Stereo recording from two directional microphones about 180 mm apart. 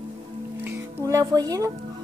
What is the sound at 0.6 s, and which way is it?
Speech, 20° right (ahead or behind).